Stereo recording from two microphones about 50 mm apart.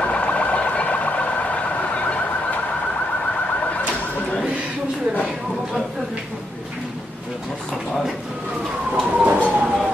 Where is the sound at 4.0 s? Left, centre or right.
Left.